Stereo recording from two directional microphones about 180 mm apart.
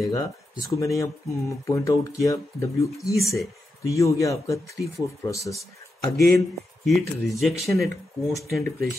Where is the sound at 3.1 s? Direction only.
Centre (ahead or behind).